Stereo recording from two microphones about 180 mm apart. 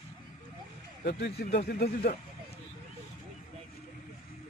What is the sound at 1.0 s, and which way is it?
Speech, 65° left (ahead or behind).